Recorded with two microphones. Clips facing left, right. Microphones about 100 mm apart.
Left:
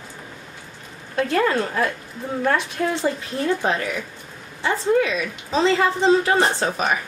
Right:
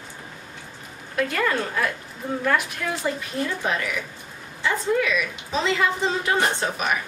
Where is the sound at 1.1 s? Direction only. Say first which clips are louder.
Left 4 dB; 30° left (ahead or behind).